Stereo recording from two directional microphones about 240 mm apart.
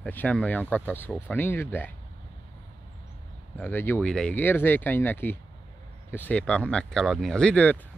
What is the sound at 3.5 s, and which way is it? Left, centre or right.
Speech, centre.